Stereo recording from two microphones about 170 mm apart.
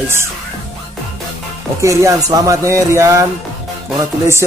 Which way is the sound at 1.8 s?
15° right (ahead or behind).